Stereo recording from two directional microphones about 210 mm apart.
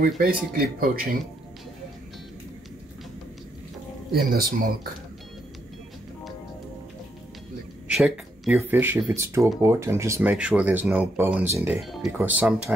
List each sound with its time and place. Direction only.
0.6 s speech: 45° right (ahead or behind)
4.1 s speech: 45° right (ahead or behind)
7.9 s speech: 5° right (ahead or behind)
11.8 s speech: centre (ahead or behind)